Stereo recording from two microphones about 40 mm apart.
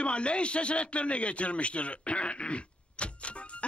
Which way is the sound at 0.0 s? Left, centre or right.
Left.